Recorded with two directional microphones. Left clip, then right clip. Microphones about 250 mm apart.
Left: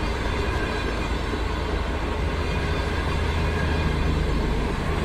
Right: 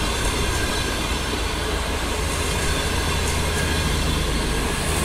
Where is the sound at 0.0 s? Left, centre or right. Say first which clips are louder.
Right 4 dB; right.